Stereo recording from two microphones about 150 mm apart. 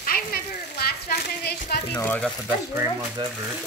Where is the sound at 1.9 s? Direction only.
10° left (ahead or behind).